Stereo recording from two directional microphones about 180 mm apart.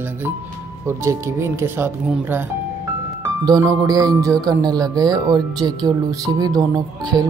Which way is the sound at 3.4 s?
20° right (ahead or behind).